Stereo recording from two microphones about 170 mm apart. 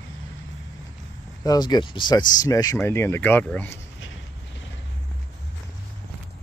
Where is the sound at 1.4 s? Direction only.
25° left (ahead or behind).